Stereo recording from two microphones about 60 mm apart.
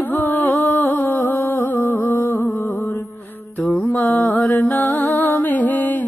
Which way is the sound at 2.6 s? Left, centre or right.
Left.